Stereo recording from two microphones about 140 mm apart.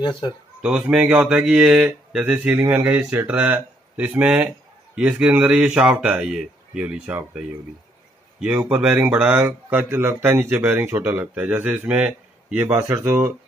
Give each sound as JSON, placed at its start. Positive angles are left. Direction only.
{"t": 0.0, "sound": "speech", "side_deg": 35}
{"t": 0.6, "sound": "a man's voice", "side_deg": -5}